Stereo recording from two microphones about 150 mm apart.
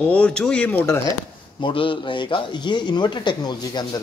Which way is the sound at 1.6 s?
35° left (ahead or behind).